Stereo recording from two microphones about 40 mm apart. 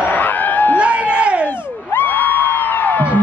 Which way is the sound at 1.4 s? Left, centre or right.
Left.